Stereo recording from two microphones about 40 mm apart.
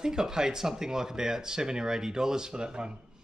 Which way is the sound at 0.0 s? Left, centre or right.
Centre.